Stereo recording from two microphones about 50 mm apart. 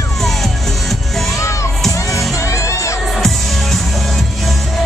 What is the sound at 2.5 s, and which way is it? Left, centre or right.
Music, left.